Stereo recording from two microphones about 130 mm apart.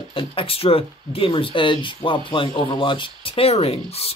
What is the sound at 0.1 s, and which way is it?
Speech, 45° left (ahead or behind).